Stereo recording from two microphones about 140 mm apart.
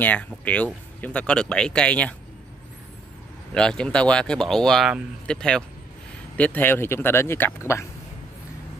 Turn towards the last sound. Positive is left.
turn(degrees=20)  # may be behind; listen again after turning